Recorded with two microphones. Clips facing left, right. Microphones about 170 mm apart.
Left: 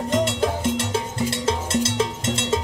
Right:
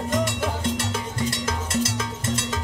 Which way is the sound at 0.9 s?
30° left (ahead or behind).